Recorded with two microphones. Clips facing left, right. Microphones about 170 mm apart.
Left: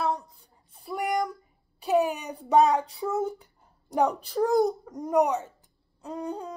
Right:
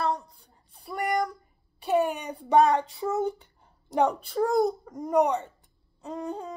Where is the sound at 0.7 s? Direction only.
Centre (ahead or behind).